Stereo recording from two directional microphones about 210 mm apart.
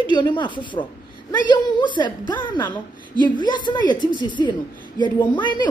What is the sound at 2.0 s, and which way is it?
Speech, 20° left (ahead or behind).